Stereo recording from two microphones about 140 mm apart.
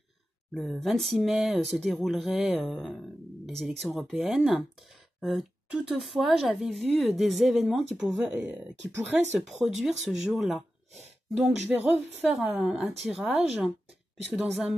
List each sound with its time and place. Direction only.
0.6 s speech: centre (ahead or behind)
8.5 s speech: 15° right (ahead or behind)
9.6 s speech: centre (ahead or behind)